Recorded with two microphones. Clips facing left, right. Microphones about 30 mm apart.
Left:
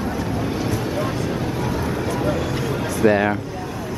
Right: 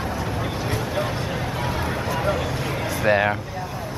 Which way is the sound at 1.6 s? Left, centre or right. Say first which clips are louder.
Left 2 dB; right.